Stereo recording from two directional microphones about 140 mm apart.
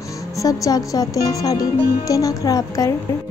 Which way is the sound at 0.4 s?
25° left (ahead or behind).